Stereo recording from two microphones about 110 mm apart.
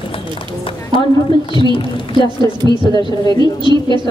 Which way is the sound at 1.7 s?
50° left (ahead or behind).